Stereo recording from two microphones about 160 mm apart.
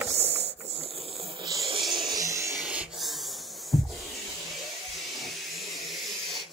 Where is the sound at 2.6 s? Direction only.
5° right (ahead or behind).